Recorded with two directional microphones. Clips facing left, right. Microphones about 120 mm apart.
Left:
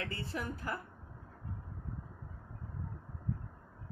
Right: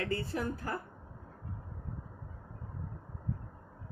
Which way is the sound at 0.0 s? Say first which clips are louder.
Right 6 dB; 35° right (ahead or behind).